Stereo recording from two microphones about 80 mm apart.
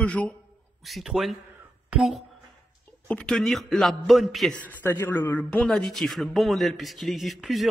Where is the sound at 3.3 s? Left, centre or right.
Centre.